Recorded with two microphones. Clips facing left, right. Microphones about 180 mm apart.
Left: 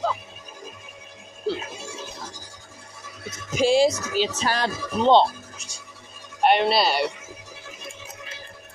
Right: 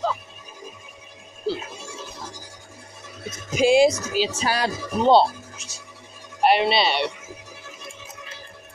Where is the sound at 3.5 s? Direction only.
15° right (ahead or behind).